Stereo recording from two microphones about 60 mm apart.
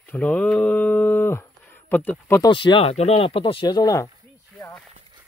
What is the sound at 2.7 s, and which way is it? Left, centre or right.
Speech, left.